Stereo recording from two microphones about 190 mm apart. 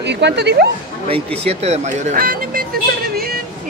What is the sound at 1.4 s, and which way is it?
Speech, 35° right (ahead or behind).